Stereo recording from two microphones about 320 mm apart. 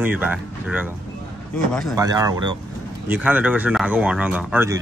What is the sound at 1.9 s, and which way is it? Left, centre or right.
A man's voice, centre.